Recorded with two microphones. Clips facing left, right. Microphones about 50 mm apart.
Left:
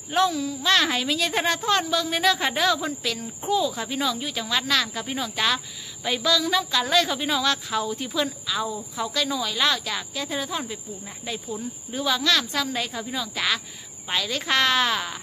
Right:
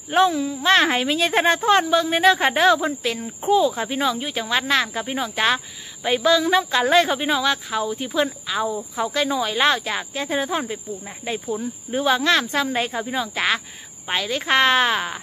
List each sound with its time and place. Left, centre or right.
0.1 s a woman's voice: right